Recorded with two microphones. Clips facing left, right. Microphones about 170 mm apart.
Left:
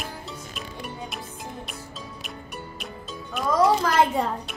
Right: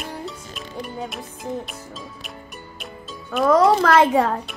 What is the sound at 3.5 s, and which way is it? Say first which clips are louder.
Speech: right 5 dB; 70° right (ahead or behind).